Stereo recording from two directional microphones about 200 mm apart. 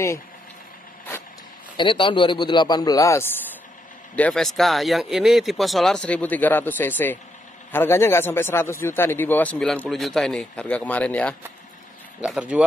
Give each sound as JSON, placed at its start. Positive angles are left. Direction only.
{"t": 1.8, "sound": "a man's voice", "side_deg": 25}
{"t": 12.2, "sound": "speech", "side_deg": -5}